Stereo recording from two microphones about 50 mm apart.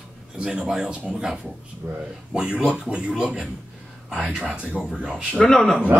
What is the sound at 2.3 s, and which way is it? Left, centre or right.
Speech, centre.